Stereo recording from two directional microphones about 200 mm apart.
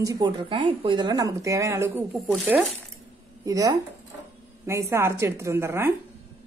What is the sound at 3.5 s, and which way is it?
Speech, 15° right (ahead or behind).